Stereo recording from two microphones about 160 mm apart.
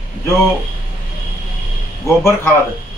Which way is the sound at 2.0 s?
15° left (ahead or behind).